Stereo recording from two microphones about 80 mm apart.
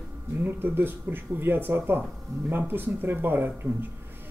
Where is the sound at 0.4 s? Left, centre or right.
Right.